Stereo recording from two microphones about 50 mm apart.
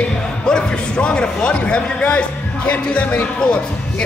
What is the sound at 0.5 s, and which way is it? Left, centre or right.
A man's voice, centre.